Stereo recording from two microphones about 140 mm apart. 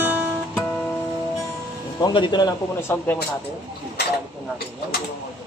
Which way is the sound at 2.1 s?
30° left (ahead or behind).